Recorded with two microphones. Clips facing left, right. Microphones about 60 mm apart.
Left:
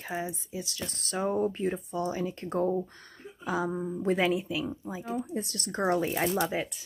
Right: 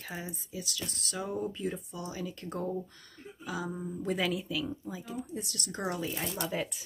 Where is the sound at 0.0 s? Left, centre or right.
Left.